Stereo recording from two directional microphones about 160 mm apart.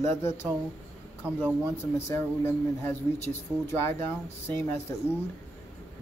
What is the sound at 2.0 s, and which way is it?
A man's voice, 15° left (ahead or behind).